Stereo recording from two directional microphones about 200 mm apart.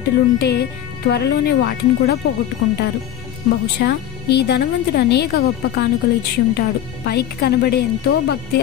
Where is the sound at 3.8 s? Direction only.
55° left (ahead or behind).